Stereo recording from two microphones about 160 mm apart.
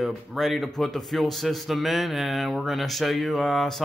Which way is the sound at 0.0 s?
Centre (ahead or behind).